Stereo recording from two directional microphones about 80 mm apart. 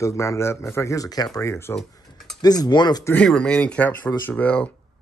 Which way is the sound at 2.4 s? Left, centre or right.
Left.